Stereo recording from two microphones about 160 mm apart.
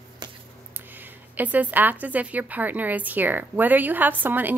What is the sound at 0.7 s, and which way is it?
Speech, 10° right (ahead or behind).